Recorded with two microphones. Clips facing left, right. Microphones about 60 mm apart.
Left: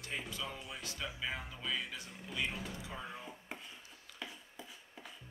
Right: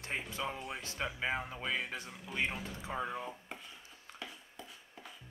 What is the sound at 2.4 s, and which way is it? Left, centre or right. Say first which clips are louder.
Speech: right 3 dB; right.